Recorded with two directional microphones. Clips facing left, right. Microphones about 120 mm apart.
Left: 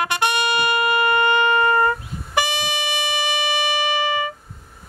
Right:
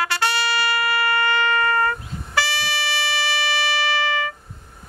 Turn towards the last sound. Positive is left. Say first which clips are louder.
# left 1 dB
turn(degrees=15)  # may be behind; listen again after turning